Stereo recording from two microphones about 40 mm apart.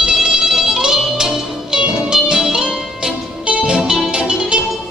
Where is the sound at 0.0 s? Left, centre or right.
Centre.